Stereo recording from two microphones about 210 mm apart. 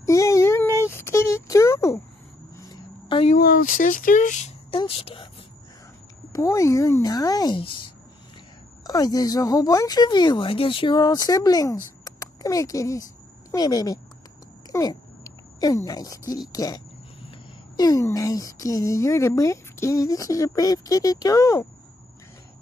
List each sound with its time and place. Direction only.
0.0 s a sound: 15° left (ahead or behind)
3.3 s speech: 40° left (ahead or behind); by 5.3 s 25° left (ahead or behind)
6.3 s speech: 15° left (ahead or behind)